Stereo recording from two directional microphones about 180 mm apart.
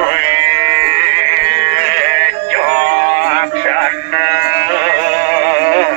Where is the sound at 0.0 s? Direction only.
45° right (ahead or behind).